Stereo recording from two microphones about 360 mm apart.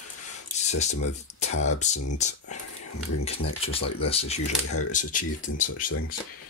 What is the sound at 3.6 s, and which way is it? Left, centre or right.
Speech, centre.